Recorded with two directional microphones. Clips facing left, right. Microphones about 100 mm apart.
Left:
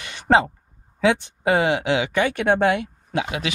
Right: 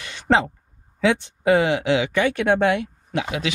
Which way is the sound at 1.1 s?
20° left (ahead or behind).